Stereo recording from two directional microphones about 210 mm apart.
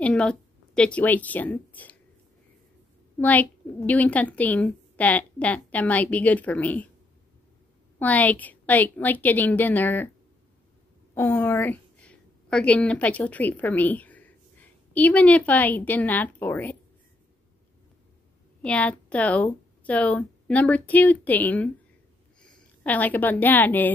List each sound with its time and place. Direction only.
0.0 s a woman's voice: 5° left (ahead or behind)
3.2 s a woman's voice: 5° left (ahead or behind)
8.0 s a woman's voice: 5° left (ahead or behind)
11.1 s a woman's voice: 10° left (ahead or behind)
18.6 s a woman's voice: 5° left (ahead or behind)